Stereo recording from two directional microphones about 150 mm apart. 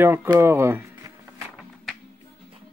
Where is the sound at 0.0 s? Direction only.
15° right (ahead or behind).